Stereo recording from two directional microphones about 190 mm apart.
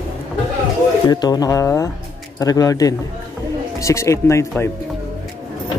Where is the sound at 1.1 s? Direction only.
20° left (ahead or behind).